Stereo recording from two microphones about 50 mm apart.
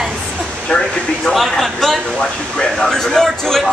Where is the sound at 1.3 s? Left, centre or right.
Centre.